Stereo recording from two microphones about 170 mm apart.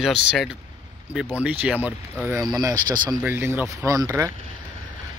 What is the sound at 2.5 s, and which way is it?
Speech, 25° right (ahead or behind).